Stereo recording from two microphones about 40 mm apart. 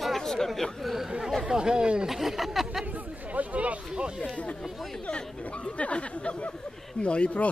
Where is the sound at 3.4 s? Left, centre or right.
Right.